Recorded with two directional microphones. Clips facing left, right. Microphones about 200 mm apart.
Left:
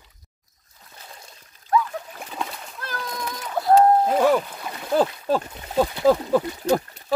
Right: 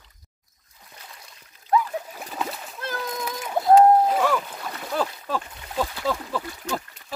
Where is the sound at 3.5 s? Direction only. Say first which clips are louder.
Right 1 dB; 20° right (ahead or behind).